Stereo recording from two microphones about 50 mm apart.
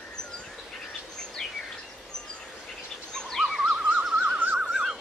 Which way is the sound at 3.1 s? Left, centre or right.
Centre.